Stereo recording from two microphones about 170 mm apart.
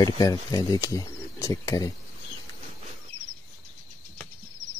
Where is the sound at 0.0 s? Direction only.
20° left (ahead or behind).